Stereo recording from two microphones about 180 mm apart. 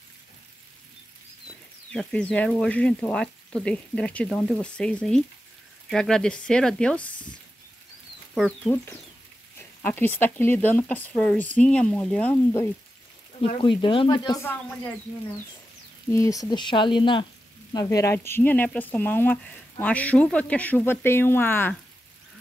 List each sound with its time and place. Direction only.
1.9 s speech: 5° left (ahead or behind)
8.4 s speech: 10° left (ahead or behind)
13.6 s speech: 25° left (ahead or behind)
16.1 s speech: 15° left (ahead or behind)